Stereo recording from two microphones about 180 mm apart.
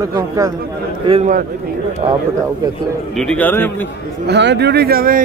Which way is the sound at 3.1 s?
5° left (ahead or behind).